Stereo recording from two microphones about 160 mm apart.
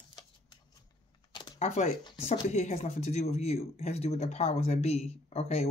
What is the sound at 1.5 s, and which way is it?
Speech, 45° left (ahead or behind).